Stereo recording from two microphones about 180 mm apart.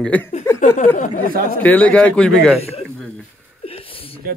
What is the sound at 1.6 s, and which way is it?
Speech, 10° left (ahead or behind).